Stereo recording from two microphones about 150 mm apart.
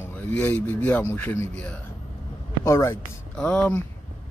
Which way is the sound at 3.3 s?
5° left (ahead or behind).